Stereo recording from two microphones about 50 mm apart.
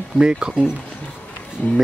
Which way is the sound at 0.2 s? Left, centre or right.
Centre.